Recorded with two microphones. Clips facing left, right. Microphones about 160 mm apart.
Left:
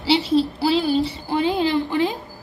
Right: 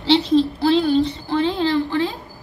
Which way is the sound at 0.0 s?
5° left (ahead or behind).